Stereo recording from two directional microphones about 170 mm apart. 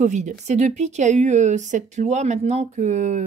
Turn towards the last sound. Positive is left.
turn(degrees=-45)  # may be behind; listen again after turning